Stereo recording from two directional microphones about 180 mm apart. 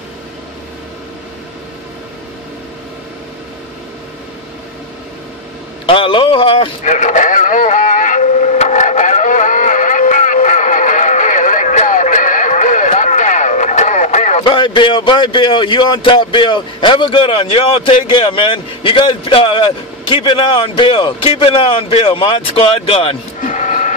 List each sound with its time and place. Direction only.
5.9 s speech: 30° left (ahead or behind)
6.8 s vehicle: 45° left (ahead or behind)
14.4 s speech: 25° left (ahead or behind)
23.4 s printer: 45° left (ahead or behind)